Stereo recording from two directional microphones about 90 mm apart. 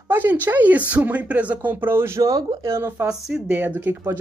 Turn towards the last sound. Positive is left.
turn(degrees=-20)  # may be behind; listen again after turning